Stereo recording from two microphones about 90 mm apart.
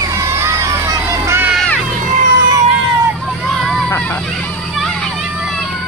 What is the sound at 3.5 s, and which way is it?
Hubbub, 5° left (ahead or behind).